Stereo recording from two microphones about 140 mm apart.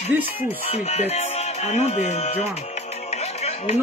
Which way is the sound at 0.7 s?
50° left (ahead or behind).